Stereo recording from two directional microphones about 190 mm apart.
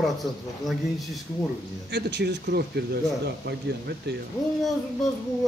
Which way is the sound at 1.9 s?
60° right (ahead or behind).